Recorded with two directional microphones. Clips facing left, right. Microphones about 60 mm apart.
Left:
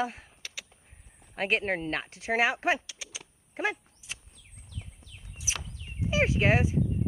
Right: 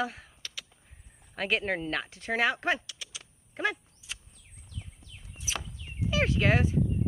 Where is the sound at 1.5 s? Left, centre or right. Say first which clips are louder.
Even; centre.